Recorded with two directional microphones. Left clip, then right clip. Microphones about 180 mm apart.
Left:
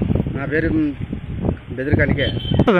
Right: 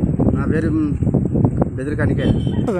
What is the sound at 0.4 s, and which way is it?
Speech, 15° right (ahead or behind).